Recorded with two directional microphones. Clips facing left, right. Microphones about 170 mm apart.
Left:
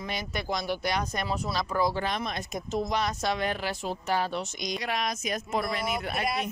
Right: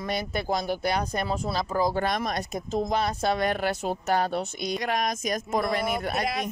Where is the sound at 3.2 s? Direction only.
50° right (ahead or behind).